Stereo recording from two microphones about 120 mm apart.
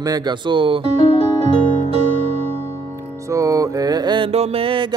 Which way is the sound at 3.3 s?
25° right (ahead or behind).